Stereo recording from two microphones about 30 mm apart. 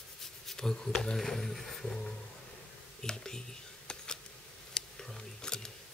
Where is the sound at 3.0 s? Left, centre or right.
Left.